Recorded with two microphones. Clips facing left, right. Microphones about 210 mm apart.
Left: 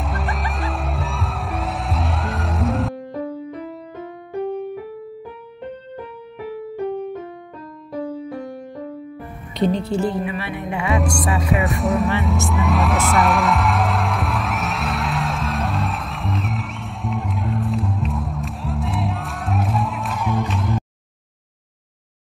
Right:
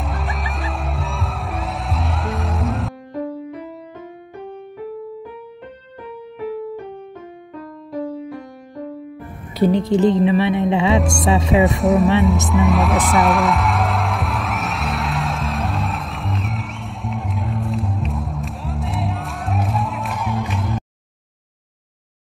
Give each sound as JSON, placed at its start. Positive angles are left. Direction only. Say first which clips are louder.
{"t": 0.0, "sound": "music", "louder": "left 1 dB", "side_deg": 0}
{"t": 9.6, "sound": "a woman's voice", "louder": "right 5 dB", "side_deg": -15}
{"t": 11.6, "sound": "speech", "louder": "right 5 dB", "side_deg": 0}
{"t": 12.2, "sound": "music", "louder": "right 5 dB", "side_deg": 0}